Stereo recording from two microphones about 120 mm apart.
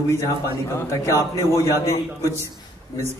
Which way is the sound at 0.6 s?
25° left (ahead or behind).